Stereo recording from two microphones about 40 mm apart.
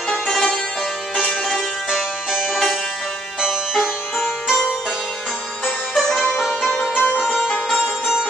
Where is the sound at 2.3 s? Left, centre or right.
Centre.